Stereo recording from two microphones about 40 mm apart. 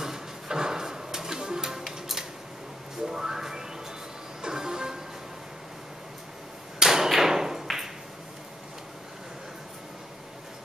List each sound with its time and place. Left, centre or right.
0.0 s music: centre
6.8 s tap: centre